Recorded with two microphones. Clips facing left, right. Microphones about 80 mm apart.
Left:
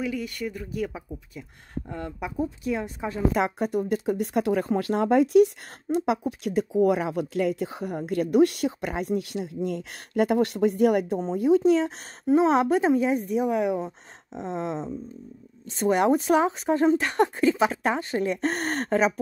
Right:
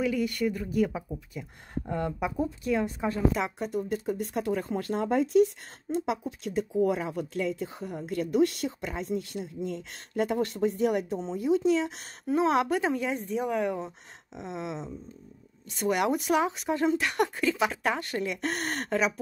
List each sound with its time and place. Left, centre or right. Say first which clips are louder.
0.0 s speech: right 3 dB; centre
3.3 s speech: left 6 dB; left
12.3 s speech: left 5 dB; left
14.3 s speech: left 6 dB; left
18.2 s speech: left 5 dB; left